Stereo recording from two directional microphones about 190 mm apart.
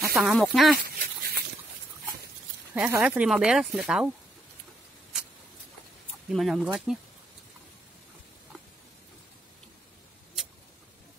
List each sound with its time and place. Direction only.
0.1 s speech: centre (ahead or behind)
0.8 s dog: 50° right (ahead or behind)
2.7 s speech: 5° right (ahead or behind)
6.3 s speech: centre (ahead or behind)